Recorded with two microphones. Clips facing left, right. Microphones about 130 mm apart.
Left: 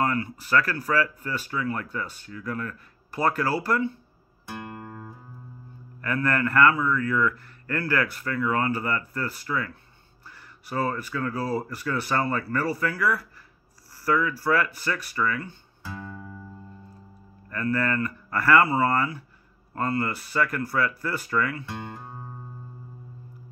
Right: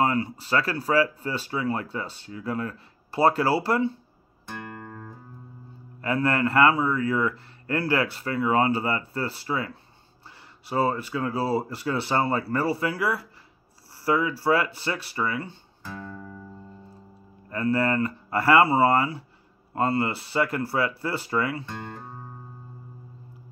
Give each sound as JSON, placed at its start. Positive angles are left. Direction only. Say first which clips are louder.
{"t": 0.0, "sound": "a man's voice", "louder": "right 2 dB", "side_deg": -25}
{"t": 4.5, "sound": "music", "louder": "left 1 dB", "side_deg": 10}
{"t": 5.9, "sound": "a man's voice", "louder": "right 2 dB", "side_deg": -25}
{"t": 15.8, "sound": "music", "louder": "even", "side_deg": 5}
{"t": 17.5, "sound": "a man's voice", "louder": "right 2 dB", "side_deg": -25}
{"t": 21.6, "sound": "music", "louder": "even", "side_deg": 10}